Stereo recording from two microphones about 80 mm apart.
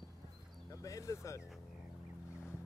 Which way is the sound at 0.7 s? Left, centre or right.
Left.